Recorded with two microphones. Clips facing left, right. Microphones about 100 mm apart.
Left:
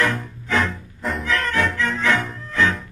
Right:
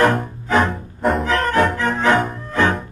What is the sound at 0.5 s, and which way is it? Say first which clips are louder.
Music: right 5 dB; 35° right (ahead or behind).